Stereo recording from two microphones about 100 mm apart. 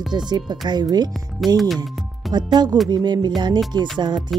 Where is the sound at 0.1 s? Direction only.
45° right (ahead or behind).